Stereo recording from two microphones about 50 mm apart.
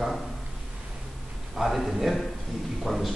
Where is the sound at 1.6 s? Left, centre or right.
Centre.